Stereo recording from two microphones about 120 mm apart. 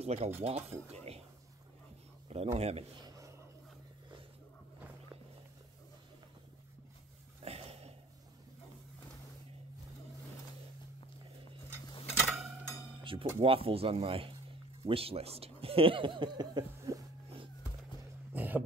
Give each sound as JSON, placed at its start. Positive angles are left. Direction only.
{"t": 0.0, "sound": "speech", "side_deg": -60}
{"t": 2.2, "sound": "speech", "side_deg": -55}
{"t": 7.4, "sound": "a sound", "side_deg": -55}
{"t": 12.2, "sound": "mechanisms", "side_deg": 5}
{"t": 13.0, "sound": "music", "side_deg": -45}
{"t": 13.4, "sound": "speech", "side_deg": -50}
{"t": 18.3, "sound": "throat clearing", "side_deg": -15}